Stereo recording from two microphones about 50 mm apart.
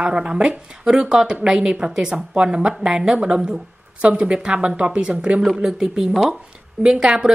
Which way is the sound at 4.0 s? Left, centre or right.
Right.